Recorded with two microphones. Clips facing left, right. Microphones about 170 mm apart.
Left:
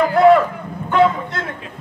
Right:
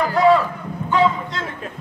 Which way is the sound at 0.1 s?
60° left (ahead or behind).